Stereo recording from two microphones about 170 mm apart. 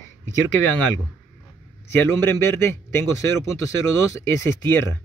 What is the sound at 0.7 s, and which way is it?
Speech, 10° left (ahead or behind).